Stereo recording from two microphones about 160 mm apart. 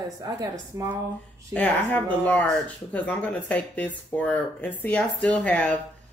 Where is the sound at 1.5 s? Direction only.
10° left (ahead or behind).